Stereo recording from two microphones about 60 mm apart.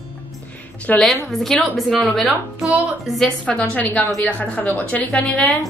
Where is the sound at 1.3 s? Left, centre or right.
Centre.